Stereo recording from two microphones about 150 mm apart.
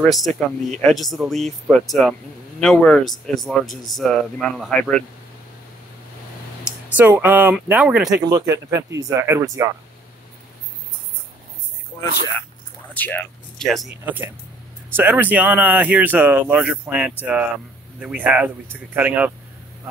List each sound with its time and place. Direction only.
0.0 s speech: centre (ahead or behind)
6.6 s speech: 10° right (ahead or behind)
8.2 s speech: 25° right (ahead or behind)
12.9 s a sound: 10° left (ahead or behind)
14.0 s speech: 10° right (ahead or behind)